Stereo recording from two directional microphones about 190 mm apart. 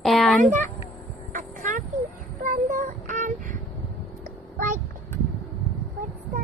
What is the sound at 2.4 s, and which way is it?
Child singing, 40° right (ahead or behind).